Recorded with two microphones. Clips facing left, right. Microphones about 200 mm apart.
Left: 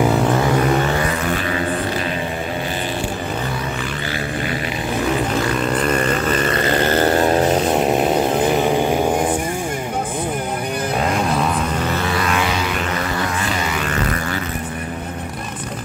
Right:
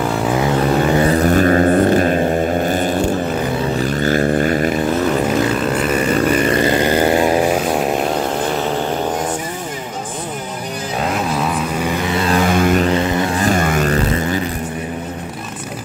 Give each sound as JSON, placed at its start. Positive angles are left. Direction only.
{"t": 1.0, "sound": "a sound", "side_deg": -40}
{"t": 4.0, "sound": "a sound", "side_deg": -45}
{"t": 5.8, "sound": "a sound", "side_deg": -5}
{"t": 8.5, "sound": "vehicle", "side_deg": 15}
{"t": 11.1, "sound": "vehicle", "side_deg": -5}
{"t": 11.9, "sound": "music", "side_deg": -20}
{"t": 12.3, "sound": "music", "side_deg": -45}
{"t": 12.8, "sound": "music", "side_deg": -25}
{"t": 13.4, "sound": "music", "side_deg": -50}